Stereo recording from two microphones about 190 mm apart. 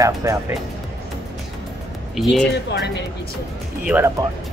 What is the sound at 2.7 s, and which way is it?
Speech, 65° left (ahead or behind).